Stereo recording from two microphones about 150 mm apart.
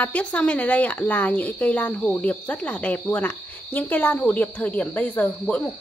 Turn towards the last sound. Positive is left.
turn(degrees=10)  # may be behind; listen again after turning